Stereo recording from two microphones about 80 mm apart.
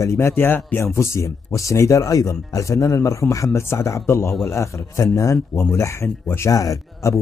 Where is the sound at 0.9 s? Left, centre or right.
Left.